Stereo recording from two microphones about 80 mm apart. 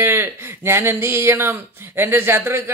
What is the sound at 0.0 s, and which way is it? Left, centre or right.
Speech, right.